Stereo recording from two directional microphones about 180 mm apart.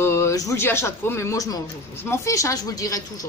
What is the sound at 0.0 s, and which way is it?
Speech, 15° left (ahead or behind).